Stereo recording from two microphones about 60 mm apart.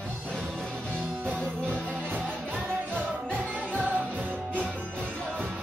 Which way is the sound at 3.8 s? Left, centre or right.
Right.